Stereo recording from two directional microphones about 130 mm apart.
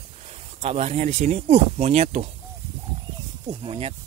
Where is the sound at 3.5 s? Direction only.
45° right (ahead or behind).